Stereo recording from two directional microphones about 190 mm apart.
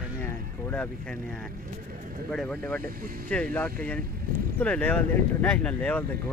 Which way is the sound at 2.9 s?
50° right (ahead or behind).